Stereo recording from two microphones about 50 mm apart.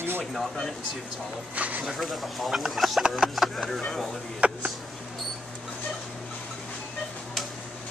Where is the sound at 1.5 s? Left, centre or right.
Right.